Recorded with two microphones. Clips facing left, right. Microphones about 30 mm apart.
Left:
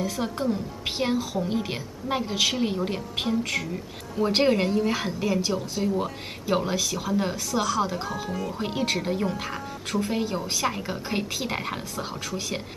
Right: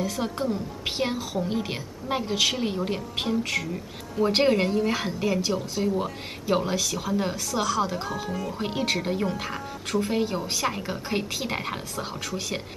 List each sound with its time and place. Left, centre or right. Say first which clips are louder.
0.0 s a woman's voice: even; centre